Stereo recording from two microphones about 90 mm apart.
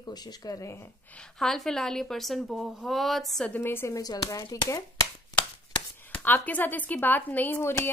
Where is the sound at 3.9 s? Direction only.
45° left (ahead or behind).